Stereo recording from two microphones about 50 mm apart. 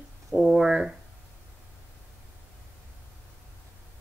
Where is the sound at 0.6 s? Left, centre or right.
Centre.